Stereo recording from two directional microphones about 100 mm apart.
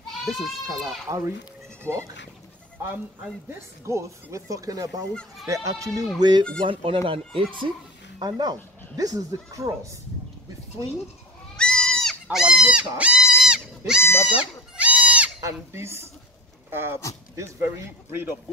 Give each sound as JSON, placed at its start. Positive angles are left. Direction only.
{"t": 0.7, "sound": "speech", "side_deg": -35}
{"t": 6.1, "sound": "speech", "side_deg": -45}
{"t": 6.6, "sound": "speech", "side_deg": -60}
{"t": 8.2, "sound": "speech", "side_deg": -45}
{"t": 11.5, "sound": "goat", "side_deg": 10}
{"t": 12.3, "sound": "goat", "side_deg": -5}
{"t": 15.4, "sound": "speech", "side_deg": -25}